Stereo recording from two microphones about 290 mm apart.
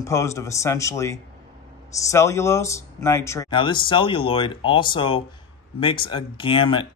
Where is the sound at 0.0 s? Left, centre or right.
Centre.